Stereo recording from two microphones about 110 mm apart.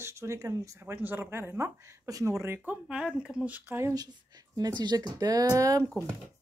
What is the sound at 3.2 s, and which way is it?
Speech, 5° right (ahead or behind).